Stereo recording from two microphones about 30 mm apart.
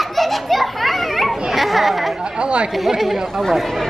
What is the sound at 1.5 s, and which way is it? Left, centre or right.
Speech, centre.